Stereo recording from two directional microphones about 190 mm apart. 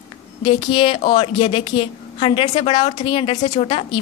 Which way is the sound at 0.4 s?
25° left (ahead or behind).